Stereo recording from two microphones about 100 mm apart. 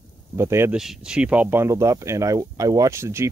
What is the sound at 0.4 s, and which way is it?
Speech, 25° right (ahead or behind).